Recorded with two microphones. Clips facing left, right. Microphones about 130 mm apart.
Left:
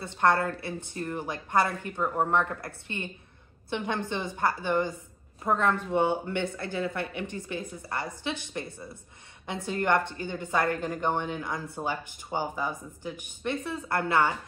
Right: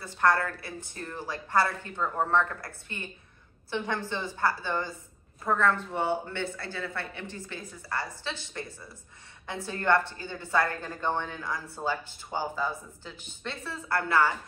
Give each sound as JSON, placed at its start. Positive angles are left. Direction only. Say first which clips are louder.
{"t": 0.0, "sound": "a woman's voice", "louder": "left 1 dB", "side_deg": 25}